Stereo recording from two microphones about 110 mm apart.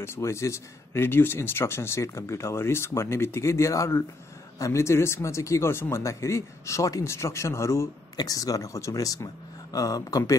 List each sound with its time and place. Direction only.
0.0 s speech: 25° left (ahead or behind)